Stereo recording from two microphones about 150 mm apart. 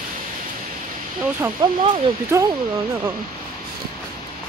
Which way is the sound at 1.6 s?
30° right (ahead or behind).